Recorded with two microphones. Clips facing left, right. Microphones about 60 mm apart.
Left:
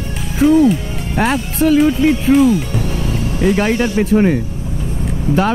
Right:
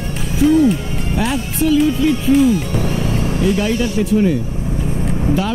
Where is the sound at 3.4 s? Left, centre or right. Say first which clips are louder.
Left 4 dB; left.